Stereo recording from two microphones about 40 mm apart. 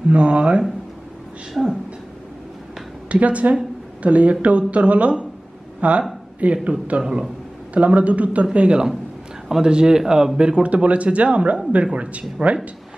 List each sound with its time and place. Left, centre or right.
0.1 s speech: right
1.5 s speech: centre
3.1 s speech: right
7.0 s a man's voice: centre
7.7 s speech: right
8.5 s a man's voice: right
10.4 s speech: right